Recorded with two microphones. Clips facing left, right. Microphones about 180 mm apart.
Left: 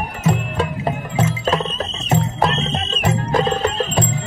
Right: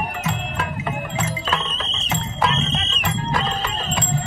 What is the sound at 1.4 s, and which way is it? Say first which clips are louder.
Music: left 6 dB; 45° left (ahead or behind).